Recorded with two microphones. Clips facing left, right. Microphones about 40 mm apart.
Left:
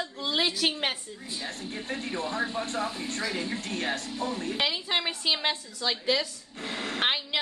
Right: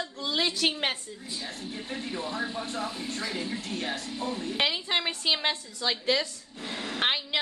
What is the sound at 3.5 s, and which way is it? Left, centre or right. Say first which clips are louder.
Speech: left 2 dB; left.